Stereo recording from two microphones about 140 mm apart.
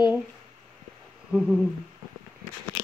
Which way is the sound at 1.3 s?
5° right (ahead or behind).